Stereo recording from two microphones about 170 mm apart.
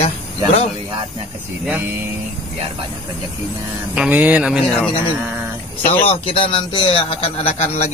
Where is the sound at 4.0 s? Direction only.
10° right (ahead or behind).